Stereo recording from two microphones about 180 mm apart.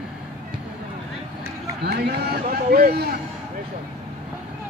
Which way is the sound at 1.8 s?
60° right (ahead or behind).